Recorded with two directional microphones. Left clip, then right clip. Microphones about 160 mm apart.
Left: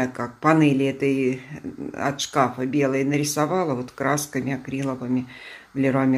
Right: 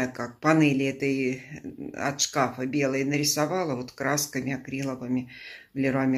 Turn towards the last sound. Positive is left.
turn(degrees=10)  # may be behind; listen again after turning